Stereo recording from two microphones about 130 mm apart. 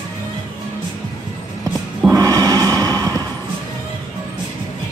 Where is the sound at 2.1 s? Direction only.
30° right (ahead or behind).